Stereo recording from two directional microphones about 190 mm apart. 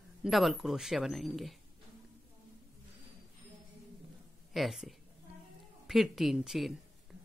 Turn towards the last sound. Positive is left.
turn(degrees=0)  # may be behind; listen again after turning